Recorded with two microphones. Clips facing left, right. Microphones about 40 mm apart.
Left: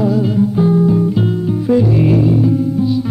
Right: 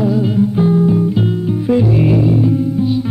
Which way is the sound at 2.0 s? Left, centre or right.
Centre.